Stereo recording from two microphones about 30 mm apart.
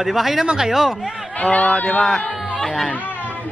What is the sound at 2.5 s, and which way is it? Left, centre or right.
Speech, centre.